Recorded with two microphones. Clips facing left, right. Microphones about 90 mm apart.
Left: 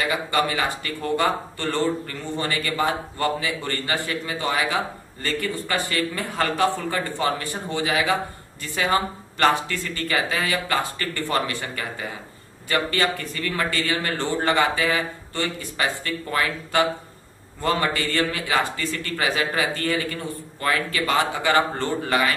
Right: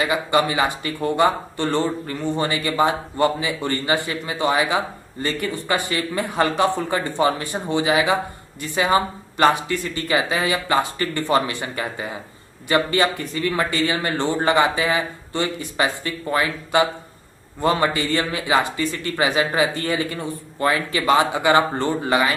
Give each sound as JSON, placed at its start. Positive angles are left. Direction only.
{"t": 0.1, "sound": "speech", "side_deg": -20}